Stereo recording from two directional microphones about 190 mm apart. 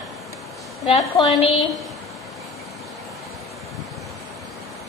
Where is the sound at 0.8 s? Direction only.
30° left (ahead or behind).